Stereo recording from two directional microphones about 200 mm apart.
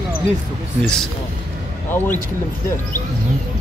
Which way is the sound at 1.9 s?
10° left (ahead or behind).